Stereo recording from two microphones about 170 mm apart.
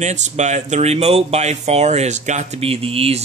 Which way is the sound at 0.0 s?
45° right (ahead or behind).